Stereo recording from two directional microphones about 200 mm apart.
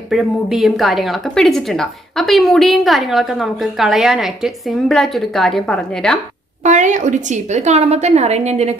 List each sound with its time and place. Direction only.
0.1 s a woman's voice: centre (ahead or behind)
6.6 s a woman's voice: 35° right (ahead or behind)